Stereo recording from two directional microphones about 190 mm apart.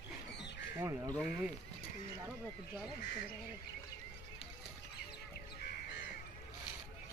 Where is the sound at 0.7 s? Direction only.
15° right (ahead or behind).